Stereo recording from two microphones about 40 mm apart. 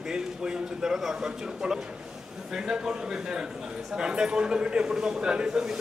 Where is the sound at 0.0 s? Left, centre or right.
Centre.